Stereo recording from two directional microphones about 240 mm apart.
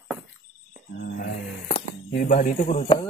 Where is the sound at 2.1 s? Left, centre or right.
Left.